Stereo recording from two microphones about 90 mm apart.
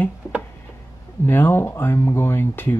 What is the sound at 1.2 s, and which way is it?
Speech, 25° left (ahead or behind).